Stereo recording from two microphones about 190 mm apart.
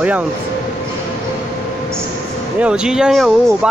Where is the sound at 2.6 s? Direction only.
5° right (ahead or behind).